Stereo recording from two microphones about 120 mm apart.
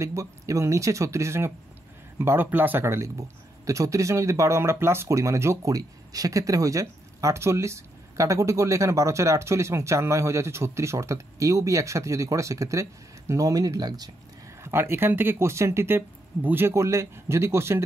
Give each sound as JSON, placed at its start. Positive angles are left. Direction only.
{"t": 0.0, "sound": "speech", "side_deg": -25}
{"t": 14.6, "sound": "speech", "side_deg": -20}